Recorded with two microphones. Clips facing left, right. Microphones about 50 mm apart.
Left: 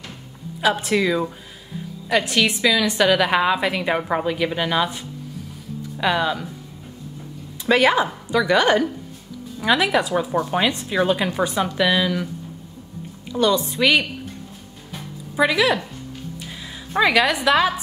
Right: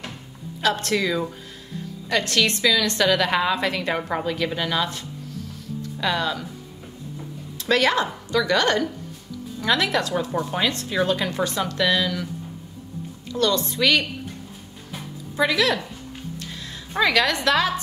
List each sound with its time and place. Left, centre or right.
0.6 s a woman's voice: centre
7.5 s a woman's voice: centre
13.3 s a woman's voice: centre
15.3 s a woman's voice: centre